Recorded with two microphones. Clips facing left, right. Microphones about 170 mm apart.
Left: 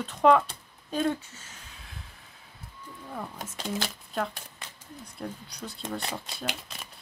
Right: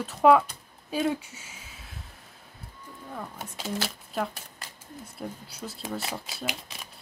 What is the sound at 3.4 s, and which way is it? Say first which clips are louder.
Speech: right 1 dB; 5° right (ahead or behind).